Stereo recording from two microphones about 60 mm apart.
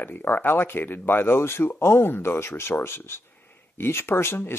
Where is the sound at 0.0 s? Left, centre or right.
Left.